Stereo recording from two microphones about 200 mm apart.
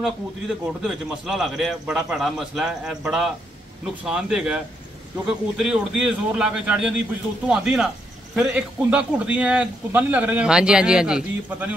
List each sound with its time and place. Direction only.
0.0 s a man's voice: centre (ahead or behind)
5.6 s a man's voice: 5° right (ahead or behind)